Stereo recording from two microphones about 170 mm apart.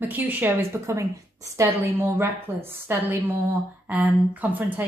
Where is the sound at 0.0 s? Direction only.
10° right (ahead or behind).